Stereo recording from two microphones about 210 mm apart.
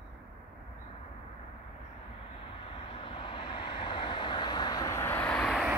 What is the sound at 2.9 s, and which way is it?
Vehicle, 25° left (ahead or behind).